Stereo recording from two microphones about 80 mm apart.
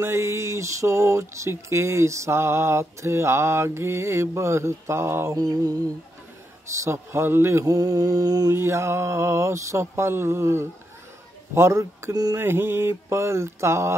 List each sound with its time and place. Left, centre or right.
0.0 s speech: right
5.3 s mantra: right
6.7 s speech: right
7.6 s mantra: right
8.5 s speech: right